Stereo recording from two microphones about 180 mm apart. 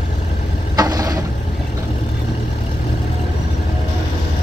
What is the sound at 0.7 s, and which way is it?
Vehicle, 20° right (ahead or behind).